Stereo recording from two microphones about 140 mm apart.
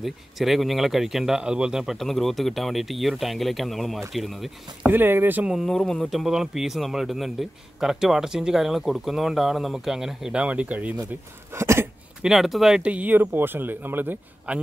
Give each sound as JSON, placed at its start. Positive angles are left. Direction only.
{"t": 0.0, "sound": "speech", "side_deg": 0}
{"t": 4.8, "sound": "speech", "side_deg": -15}
{"t": 5.5, "sound": "speech", "side_deg": 0}
{"t": 11.5, "sound": "a sound", "side_deg": -20}
{"t": 12.2, "sound": "speech", "side_deg": -5}